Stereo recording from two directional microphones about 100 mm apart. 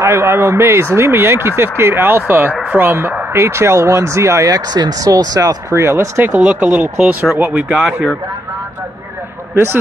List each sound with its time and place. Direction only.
0.0 s speech: 25° right (ahead or behind)
2.5 s speech: 10° right (ahead or behind)
2.8 s speech: 20° right (ahead or behind)
7.7 s speech: 5° right (ahead or behind)